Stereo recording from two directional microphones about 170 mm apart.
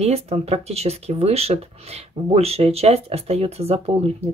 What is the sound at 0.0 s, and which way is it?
Speech, 35° right (ahead or behind).